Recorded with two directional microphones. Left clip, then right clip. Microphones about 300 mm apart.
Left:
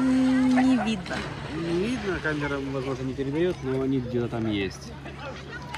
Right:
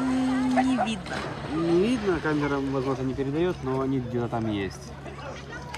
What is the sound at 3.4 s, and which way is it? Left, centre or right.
Speech, centre.